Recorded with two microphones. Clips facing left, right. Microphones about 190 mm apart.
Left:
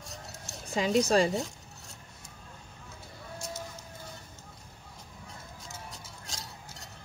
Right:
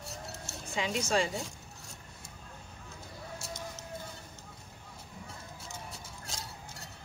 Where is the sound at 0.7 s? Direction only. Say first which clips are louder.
Left 6 dB; 35° left (ahead or behind).